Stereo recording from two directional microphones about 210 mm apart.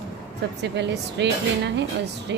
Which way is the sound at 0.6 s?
55° right (ahead or behind).